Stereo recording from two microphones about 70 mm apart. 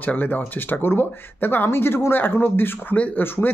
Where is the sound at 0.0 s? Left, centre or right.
Left.